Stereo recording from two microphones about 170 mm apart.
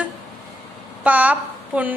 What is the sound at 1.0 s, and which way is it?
Speech, 10° right (ahead or behind).